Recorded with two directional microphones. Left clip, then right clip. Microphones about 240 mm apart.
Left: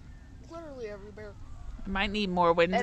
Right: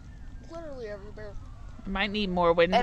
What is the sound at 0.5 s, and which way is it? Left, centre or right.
Speech, left.